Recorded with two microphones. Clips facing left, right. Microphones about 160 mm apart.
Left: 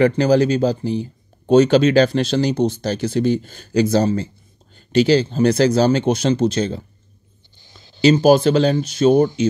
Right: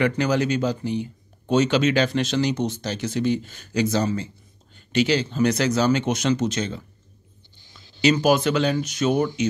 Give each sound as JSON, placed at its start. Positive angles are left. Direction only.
{"t": 0.0, "sound": "speech", "side_deg": 35}